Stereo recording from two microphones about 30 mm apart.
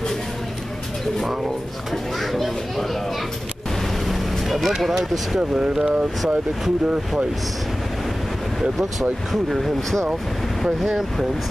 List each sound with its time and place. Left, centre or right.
4.1 s vehicle: centre
4.8 s speech: centre
5.5 s speech: right
9.3 s speech: centre